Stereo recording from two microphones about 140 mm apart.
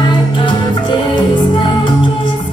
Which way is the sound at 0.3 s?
35° left (ahead or behind).